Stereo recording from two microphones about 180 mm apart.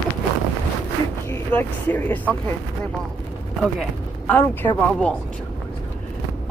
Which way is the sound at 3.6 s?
Centre (ahead or behind).